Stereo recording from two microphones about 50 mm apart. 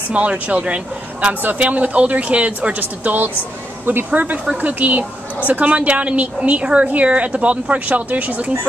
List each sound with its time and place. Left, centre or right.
0.1 s a woman's voice: right